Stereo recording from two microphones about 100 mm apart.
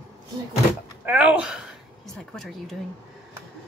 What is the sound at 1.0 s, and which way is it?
Speech, 10° right (ahead or behind).